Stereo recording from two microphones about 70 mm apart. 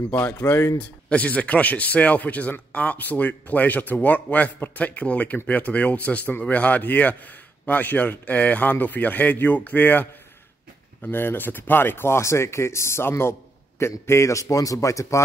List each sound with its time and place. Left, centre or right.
0.4 s speech: left
0.7 s speech: centre; by 15.2 s left